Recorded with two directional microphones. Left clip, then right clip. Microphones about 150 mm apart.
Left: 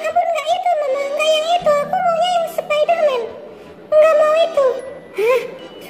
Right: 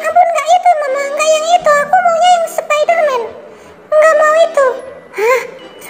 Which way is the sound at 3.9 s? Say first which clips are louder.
Right 3 dB; centre (ahead or behind).